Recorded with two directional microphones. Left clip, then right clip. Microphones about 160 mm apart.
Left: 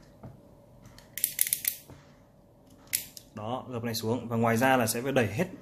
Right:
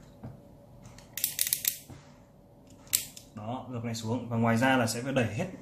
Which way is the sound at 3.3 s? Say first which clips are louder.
Left 4 dB; 70° left (ahead or behind).